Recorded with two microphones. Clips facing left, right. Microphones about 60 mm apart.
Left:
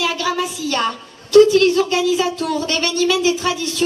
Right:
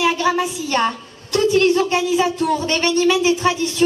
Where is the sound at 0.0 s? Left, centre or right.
Right.